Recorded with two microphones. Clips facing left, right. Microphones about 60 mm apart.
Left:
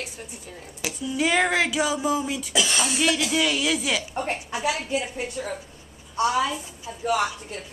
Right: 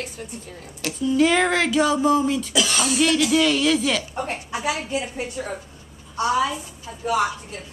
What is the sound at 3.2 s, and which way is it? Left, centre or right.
Speech, centre.